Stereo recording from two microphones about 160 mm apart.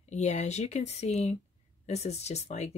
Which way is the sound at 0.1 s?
45° left (ahead or behind).